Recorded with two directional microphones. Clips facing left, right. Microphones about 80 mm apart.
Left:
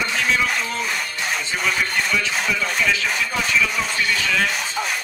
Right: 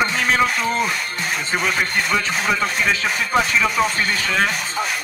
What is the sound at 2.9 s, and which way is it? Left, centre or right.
Speech, right.